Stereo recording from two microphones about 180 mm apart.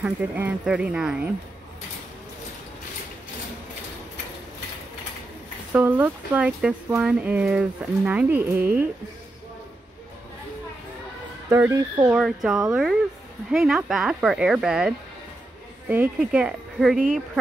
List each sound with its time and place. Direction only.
0.0 s speech: 10° right (ahead or behind)
5.7 s speech: 10° right (ahead or behind)
11.5 s speech: 15° right (ahead or behind)
12.1 s speech: 5° right (ahead or behind)